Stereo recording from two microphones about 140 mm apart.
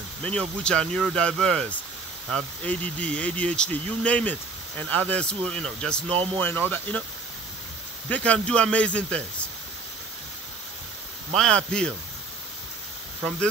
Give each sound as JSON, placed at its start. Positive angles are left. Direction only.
{"t": 0.2, "sound": "speech", "side_deg": 5}
{"t": 6.0, "sound": "speech", "side_deg": -40}
{"t": 6.4, "sound": "speech", "side_deg": 15}
{"t": 8.1, "sound": "speech", "side_deg": 10}
{"t": 11.3, "sound": "speech", "side_deg": 5}